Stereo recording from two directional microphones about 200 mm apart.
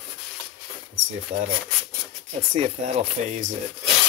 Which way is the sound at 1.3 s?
35° right (ahead or behind).